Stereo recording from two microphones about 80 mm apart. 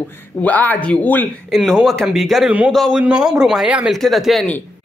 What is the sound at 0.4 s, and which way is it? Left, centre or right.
Speech, centre.